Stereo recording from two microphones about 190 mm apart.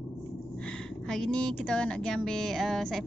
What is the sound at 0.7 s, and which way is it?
A woman's voice, 5° left (ahead or behind).